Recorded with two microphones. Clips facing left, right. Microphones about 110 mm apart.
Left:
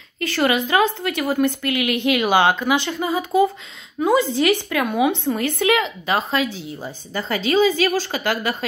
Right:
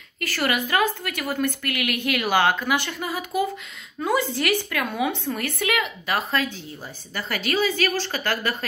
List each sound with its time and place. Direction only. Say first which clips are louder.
0.2 s a woman's voice: left 5 dB; 20° left (ahead or behind)